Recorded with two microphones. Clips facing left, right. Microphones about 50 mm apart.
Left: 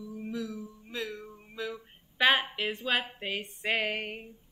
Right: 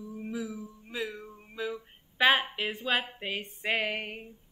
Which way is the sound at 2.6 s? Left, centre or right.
Centre.